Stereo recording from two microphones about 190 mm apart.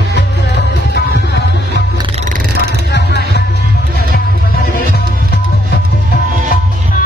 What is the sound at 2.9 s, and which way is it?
Music, 60° left (ahead or behind).